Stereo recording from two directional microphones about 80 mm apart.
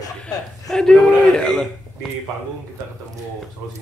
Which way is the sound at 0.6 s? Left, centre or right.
Centre.